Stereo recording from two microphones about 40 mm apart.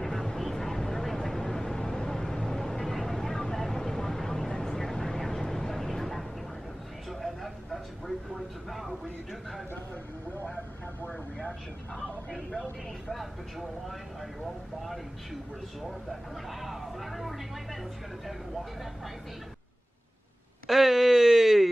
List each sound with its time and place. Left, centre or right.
0.0 s vehicle: centre
8.4 s speech: centre
11.9 s speech: centre
13.1 s speech: centre
16.1 s speech: centre
20.6 s speech: centre